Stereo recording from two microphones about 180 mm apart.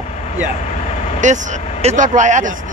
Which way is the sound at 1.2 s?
40° right (ahead or behind).